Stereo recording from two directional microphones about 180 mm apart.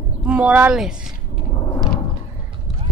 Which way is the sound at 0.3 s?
10° right (ahead or behind).